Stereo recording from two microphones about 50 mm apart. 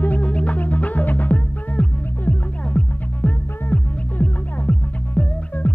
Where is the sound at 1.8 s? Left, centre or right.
Left.